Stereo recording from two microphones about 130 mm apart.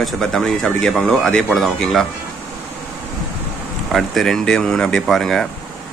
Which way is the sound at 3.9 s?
Centre (ahead or behind).